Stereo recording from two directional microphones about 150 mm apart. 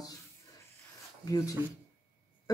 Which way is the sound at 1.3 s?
20° left (ahead or behind).